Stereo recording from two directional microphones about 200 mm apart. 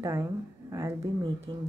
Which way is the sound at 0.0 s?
15° right (ahead or behind).